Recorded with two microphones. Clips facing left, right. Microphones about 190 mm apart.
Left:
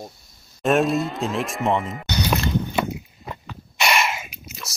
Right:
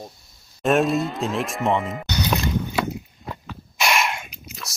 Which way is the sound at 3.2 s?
Centre (ahead or behind).